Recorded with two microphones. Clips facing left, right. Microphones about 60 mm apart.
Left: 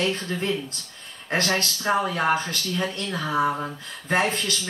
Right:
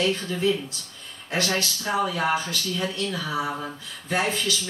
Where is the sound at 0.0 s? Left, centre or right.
Left.